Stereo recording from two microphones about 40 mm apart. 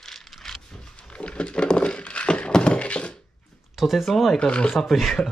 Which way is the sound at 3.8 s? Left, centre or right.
Centre.